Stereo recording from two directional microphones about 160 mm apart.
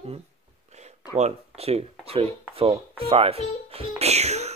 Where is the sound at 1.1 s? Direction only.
40° right (ahead or behind).